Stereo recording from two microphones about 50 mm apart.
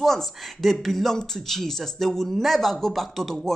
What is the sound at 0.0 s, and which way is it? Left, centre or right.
Speech, centre.